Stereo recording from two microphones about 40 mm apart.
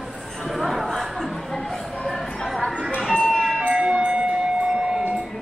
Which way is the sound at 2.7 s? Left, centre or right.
Right.